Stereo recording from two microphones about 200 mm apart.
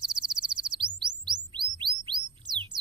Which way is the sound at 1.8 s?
25° right (ahead or behind).